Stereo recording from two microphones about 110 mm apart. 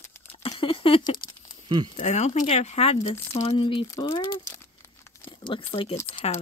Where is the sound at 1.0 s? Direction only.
40° left (ahead or behind).